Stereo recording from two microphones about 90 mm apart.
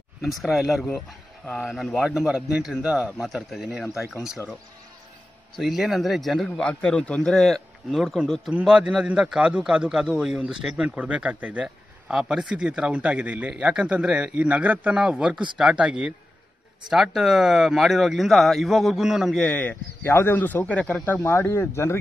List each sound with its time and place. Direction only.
0.2 s speech: centre (ahead or behind)
0.8 s speech: 10° left (ahead or behind)
2.0 s a man's voice: 5° right (ahead or behind)
5.6 s speech: centre (ahead or behind)
6.6 s a man's voice: 10° left (ahead or behind); by 15.0 s 15° right (ahead or behind)
15.0 s a man's voice: 5° right (ahead or behind)
16.9 s speech: 5° right (ahead or behind)
19.4 s speech: 15° left (ahead or behind)
21.2 s speech: 30° left (ahead or behind)